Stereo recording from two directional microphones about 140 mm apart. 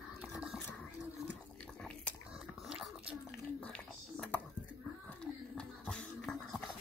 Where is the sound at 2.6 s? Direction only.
5° right (ahead or behind).